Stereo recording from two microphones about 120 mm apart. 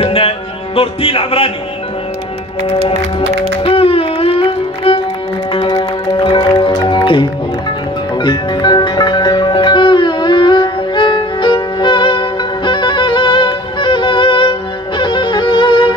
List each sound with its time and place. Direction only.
0.0 s music: 50° left (ahead or behind)
3.2 s music: 50° left (ahead or behind)